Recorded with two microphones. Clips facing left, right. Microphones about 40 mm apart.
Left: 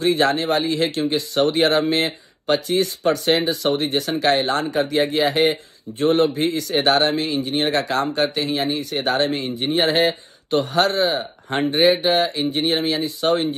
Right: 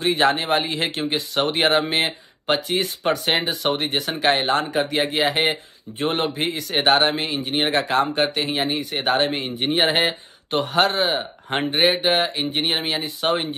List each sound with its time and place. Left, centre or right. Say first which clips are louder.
0.0 s speech: left 1 dB; right